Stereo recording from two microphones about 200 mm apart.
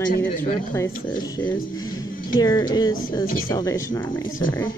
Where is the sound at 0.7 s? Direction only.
15° left (ahead or behind).